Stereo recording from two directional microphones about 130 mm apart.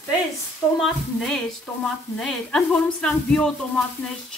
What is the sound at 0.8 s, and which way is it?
A woman's voice, 5° left (ahead or behind).